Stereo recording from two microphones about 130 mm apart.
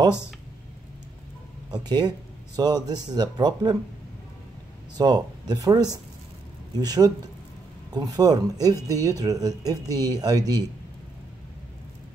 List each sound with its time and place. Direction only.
1.7 s speech: 35° right (ahead or behind)
4.9 s speech: 30° right (ahead or behind)